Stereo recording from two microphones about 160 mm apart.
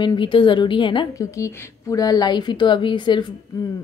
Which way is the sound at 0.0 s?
30° left (ahead or behind).